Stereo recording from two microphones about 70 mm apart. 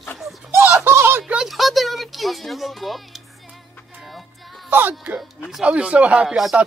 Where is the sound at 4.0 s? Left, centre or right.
Centre.